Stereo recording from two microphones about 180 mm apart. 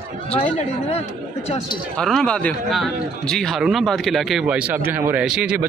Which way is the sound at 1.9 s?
5° left (ahead or behind).